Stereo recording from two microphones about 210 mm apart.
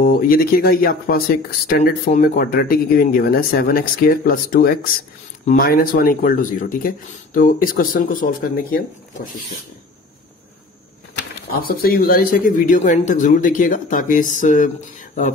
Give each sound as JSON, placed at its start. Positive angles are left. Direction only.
{"t": 0.0, "sound": "speech", "side_deg": 45}
{"t": 11.1, "sound": "speech", "side_deg": 45}